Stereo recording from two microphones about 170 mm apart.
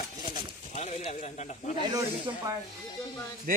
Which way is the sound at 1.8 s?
20° right (ahead or behind).